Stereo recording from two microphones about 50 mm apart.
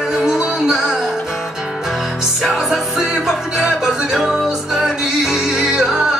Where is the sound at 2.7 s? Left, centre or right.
Centre.